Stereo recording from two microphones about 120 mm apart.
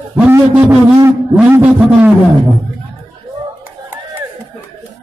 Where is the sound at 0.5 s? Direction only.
10° right (ahead or behind).